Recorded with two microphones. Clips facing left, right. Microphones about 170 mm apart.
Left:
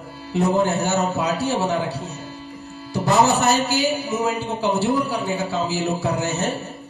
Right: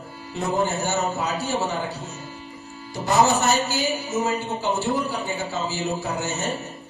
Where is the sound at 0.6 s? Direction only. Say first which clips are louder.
Left 4 dB; 65° left (ahead or behind).